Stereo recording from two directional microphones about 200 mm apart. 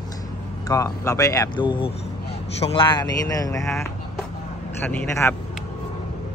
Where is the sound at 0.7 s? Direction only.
15° left (ahead or behind).